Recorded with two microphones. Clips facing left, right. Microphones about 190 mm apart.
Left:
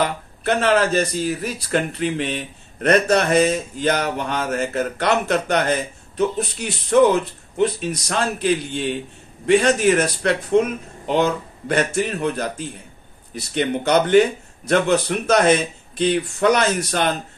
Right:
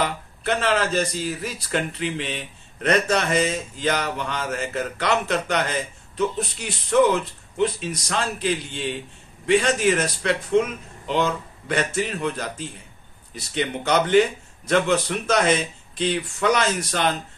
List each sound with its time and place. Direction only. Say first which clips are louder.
0.4 s speech: left 5 dB; 50° left (ahead or behind)
13.9 s speech: left 3 dB; 45° left (ahead or behind)